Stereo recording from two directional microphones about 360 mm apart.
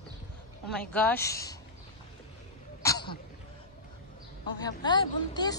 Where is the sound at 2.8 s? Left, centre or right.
Centre.